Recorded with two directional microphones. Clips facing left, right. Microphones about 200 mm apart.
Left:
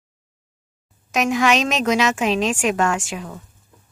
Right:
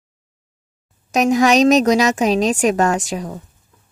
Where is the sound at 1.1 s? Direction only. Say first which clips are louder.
Right 5 dB; 40° right (ahead or behind).